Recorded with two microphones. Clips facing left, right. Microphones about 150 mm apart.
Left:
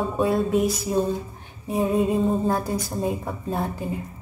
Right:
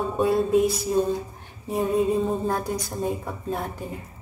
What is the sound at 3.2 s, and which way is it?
Speech, 30° left (ahead or behind).